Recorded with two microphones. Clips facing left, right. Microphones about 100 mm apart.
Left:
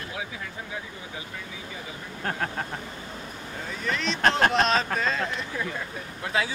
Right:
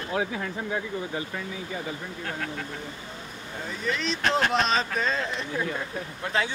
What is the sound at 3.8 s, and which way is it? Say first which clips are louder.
Speech: even; centre (ahead or behind).